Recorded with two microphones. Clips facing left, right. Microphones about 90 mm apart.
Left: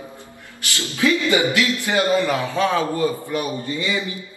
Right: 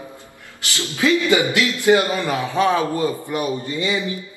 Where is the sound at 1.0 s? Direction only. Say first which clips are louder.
Right 1 dB; 20° right (ahead or behind).